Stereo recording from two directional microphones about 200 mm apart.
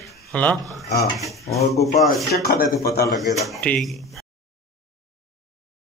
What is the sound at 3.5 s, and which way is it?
Speech, 5° left (ahead or behind).